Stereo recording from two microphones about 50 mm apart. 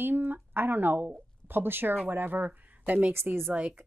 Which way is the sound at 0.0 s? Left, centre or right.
Right.